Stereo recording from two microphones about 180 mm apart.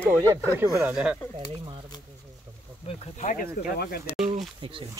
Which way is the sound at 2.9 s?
35° left (ahead or behind).